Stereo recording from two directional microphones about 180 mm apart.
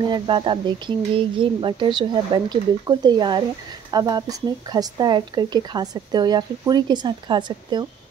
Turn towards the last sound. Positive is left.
turn(degrees=-25)  # may be behind; listen again after turning